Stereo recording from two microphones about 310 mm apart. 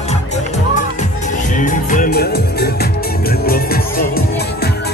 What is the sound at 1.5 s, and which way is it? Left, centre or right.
Music, left.